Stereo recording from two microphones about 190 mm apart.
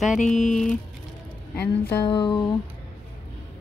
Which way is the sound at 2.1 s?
25° left (ahead or behind).